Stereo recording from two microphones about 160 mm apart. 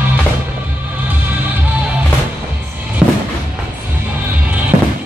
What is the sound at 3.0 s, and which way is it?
Music, 5° right (ahead or behind).